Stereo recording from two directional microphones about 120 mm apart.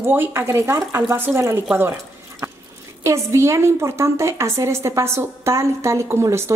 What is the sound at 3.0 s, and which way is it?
A woman's voice, 25° right (ahead or behind).